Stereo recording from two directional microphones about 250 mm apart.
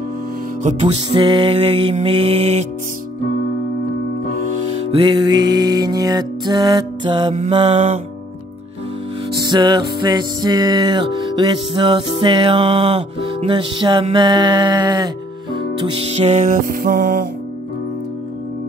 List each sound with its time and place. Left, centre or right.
0.7 s music: right
4.9 s music: centre
9.4 s music: centre; by 17.3 s right